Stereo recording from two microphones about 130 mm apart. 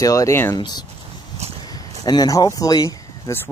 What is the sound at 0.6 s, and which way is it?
Speech, 35° left (ahead or behind).